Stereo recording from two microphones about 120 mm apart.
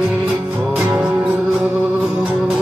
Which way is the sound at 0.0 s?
Centre (ahead or behind).